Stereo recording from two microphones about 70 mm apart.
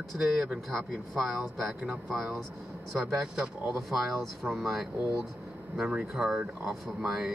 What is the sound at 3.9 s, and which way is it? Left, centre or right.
Speech, centre.